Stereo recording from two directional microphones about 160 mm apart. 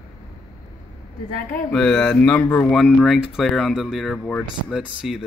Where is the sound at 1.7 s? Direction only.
5° left (ahead or behind).